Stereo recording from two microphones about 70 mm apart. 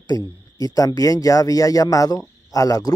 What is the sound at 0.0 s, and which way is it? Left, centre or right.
Speech, left.